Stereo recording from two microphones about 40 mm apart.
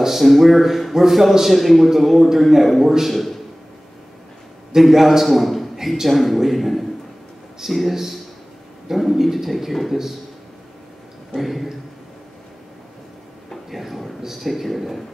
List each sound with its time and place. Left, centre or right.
0.0 s a man's voice: centre
4.7 s a man's voice: centre
5.8 s speech: centre
6.0 s a man's voice: centre
11.3 s a man's voice: centre
13.7 s a man's voice: centre